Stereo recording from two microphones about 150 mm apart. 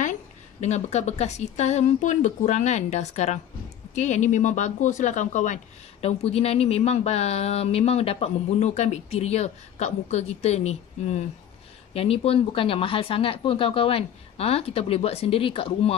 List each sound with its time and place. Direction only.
0.0 s speech: 55° left (ahead or behind); by 15.9 s 35° left (ahead or behind)